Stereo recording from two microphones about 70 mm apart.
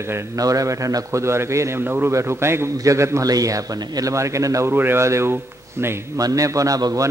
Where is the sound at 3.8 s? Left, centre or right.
Right.